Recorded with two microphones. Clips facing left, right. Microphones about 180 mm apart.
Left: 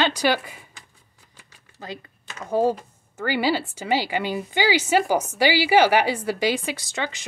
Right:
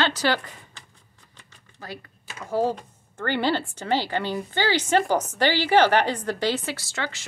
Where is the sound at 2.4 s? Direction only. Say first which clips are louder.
Left 3 dB; 15° left (ahead or behind).